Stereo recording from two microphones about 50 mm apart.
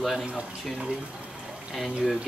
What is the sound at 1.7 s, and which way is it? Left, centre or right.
Speech, centre.